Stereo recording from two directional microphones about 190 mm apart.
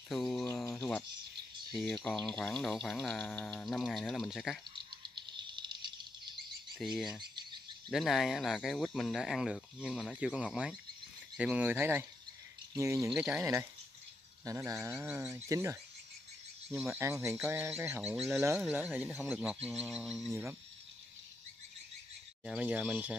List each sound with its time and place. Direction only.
0.7 s cricket: 10° left (ahead or behind)
2.0 s speech: 5° left (ahead or behind)
5.0 s a sound: 25° right (ahead or behind)
6.8 s speech: centre (ahead or behind)
7.2 s bird: 25° right (ahead or behind)
7.9 s speech: centre (ahead or behind); by 13.1 s 15° right (ahead or behind)
13.1 s speech: 5° right (ahead or behind)
22.4 s speech: 5° right (ahead or behind)